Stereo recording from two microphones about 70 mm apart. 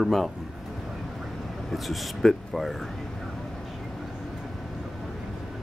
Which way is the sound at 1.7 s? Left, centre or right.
Centre.